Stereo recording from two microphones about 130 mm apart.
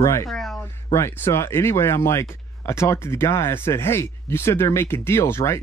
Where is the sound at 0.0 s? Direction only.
25° left (ahead or behind).